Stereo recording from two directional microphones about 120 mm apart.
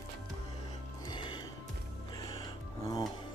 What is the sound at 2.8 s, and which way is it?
Music, 30° left (ahead or behind).